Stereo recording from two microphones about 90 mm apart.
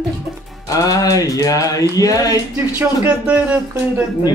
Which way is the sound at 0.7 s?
40° left (ahead or behind).